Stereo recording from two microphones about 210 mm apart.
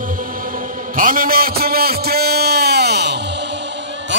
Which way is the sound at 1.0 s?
40° right (ahead or behind).